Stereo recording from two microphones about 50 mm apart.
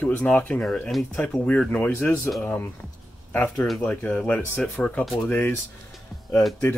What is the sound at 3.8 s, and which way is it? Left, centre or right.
Speech, left.